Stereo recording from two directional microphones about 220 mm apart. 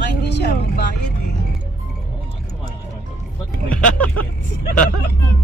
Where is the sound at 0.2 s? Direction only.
50° left (ahead or behind).